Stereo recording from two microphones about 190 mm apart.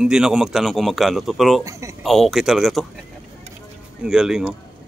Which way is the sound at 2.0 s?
Centre (ahead or behind).